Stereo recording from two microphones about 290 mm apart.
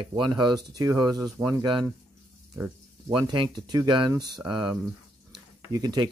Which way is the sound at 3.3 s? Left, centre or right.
Centre.